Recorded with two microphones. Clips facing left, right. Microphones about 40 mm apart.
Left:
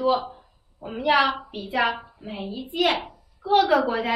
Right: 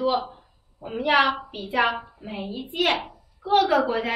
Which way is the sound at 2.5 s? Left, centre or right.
Right.